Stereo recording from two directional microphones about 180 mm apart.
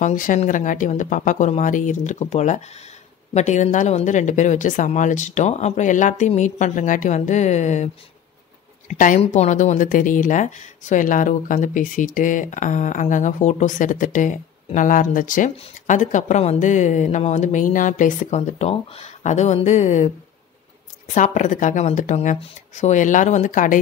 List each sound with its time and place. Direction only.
0.0 s a woman's voice: 45° left (ahead or behind)
21.1 s speech: 45° left (ahead or behind)